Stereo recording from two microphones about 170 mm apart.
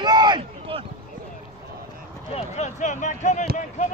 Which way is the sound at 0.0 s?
25° right (ahead or behind).